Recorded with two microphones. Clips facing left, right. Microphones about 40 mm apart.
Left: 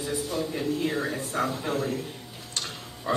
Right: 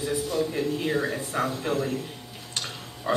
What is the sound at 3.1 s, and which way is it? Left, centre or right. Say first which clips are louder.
Speech: right 2 dB; centre.